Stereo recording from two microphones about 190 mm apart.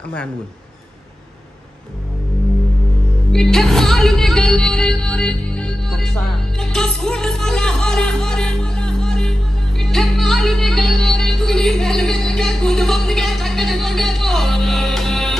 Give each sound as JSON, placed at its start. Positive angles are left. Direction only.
{"t": 3.3, "sound": "music", "side_deg": 0}